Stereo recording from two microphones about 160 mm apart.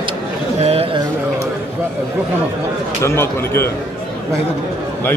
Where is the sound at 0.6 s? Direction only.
40° right (ahead or behind).